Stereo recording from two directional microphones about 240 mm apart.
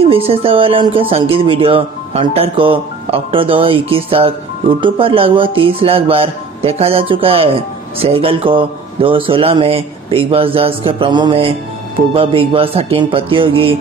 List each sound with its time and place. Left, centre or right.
0.0 s speech: right